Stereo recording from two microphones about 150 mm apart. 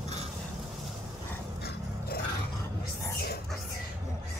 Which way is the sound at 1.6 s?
90° left.